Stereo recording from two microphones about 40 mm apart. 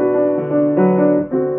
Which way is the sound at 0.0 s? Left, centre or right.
Centre.